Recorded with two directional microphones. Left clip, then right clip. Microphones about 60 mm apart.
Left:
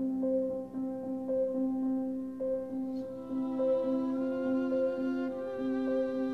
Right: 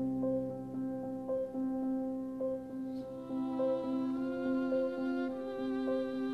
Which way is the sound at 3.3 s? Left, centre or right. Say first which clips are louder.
Left 3 dB; right.